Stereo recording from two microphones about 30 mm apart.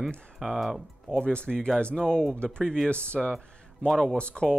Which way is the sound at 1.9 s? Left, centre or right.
Left.